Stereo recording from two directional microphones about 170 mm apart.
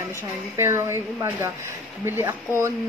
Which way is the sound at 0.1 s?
15° right (ahead or behind).